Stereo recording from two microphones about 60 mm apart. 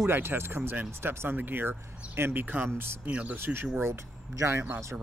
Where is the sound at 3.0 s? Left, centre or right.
Right.